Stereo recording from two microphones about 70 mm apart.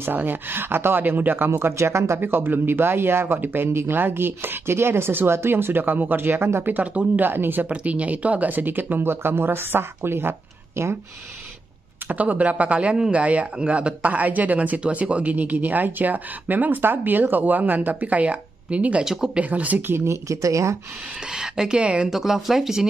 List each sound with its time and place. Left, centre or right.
0.0 s speech: right
2.1 s speech: right
7.6 s a man's voice: centre; by 10.9 s right
12.1 s a man's voice: right
19.4 s a man's voice: right
19.9 s speech: right
21.3 s speech: centre
22.1 s speech: centre